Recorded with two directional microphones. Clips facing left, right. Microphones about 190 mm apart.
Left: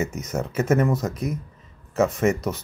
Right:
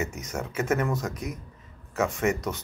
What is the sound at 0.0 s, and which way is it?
Speech, 20° left (ahead or behind).